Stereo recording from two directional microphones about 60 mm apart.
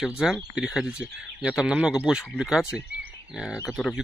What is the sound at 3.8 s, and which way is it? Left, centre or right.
Speech, centre.